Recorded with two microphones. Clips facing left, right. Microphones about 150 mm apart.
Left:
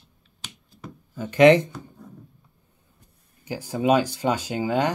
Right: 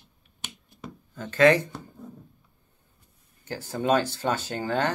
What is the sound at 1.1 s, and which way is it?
Speech, 10° left (ahead or behind).